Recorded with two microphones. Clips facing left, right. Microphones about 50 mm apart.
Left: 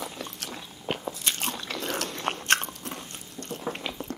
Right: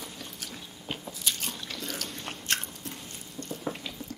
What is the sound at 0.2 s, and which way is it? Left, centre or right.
Biting, left.